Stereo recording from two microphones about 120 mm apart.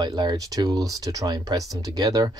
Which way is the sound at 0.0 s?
35° right (ahead or behind).